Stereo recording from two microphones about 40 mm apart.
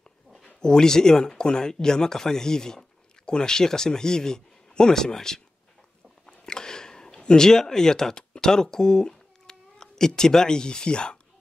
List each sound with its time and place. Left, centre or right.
0.6 s speech: centre
6.4 s speech: centre